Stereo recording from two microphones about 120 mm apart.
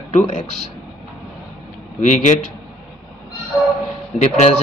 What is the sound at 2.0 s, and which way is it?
Speech, 80° left.